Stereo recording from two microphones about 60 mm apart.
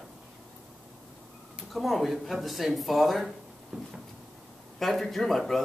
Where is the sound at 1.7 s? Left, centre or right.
Centre.